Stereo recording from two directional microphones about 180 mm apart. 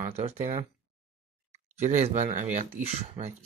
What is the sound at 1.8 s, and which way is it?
Speech, 40° right (ahead or behind).